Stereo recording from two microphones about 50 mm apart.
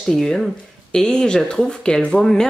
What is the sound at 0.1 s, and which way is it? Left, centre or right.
Speech, centre.